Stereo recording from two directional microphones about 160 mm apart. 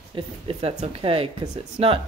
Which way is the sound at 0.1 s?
35° right (ahead or behind).